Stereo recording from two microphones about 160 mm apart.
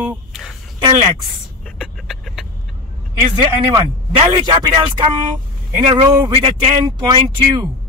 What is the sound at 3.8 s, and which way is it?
Speech, 30° right (ahead or behind).